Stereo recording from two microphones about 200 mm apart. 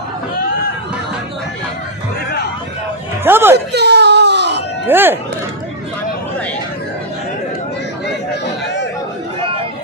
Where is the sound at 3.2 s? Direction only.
10° right (ahead or behind).